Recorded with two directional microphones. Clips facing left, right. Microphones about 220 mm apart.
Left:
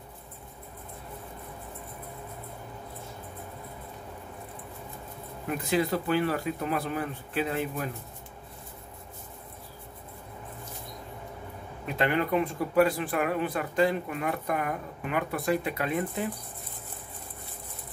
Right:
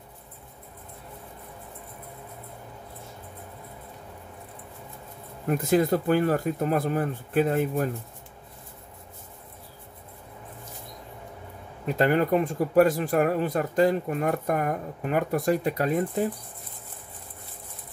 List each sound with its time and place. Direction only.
5.5 s speech: 45° right (ahead or behind)
11.8 s speech: 40° right (ahead or behind)